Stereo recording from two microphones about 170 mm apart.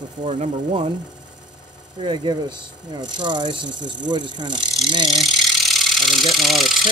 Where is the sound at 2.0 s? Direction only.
30° right (ahead or behind).